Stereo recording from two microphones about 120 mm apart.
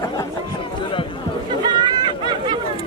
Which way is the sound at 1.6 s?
35° right (ahead or behind).